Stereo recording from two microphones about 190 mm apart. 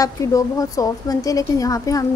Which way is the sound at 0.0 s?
15° left (ahead or behind).